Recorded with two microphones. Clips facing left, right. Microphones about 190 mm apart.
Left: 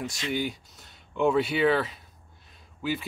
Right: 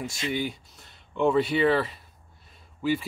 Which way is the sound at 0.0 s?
Centre (ahead or behind).